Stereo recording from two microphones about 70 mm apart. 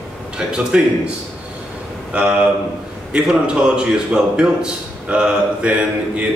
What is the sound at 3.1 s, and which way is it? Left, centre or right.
A man's voice, centre.